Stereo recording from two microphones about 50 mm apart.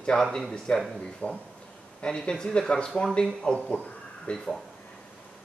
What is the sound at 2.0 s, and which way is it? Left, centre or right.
Speech, centre.